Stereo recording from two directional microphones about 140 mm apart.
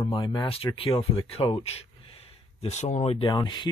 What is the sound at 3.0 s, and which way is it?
Speech, 40° left (ahead or behind).